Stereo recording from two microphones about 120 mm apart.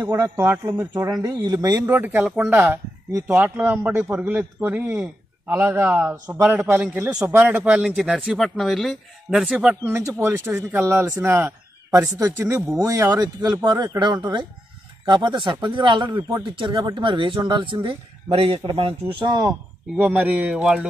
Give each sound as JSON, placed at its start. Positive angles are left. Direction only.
{"t": 0.0, "sound": "speech", "side_deg": -20}
{"t": 1.9, "sound": "a man's voice", "side_deg": -15}
{"t": 7.7, "sound": "speech", "side_deg": -5}
{"t": 9.8, "sound": "speech", "side_deg": -25}
{"t": 19.2, "sound": "speech", "side_deg": -35}
{"t": 20.0, "sound": "a man's voice", "side_deg": -10}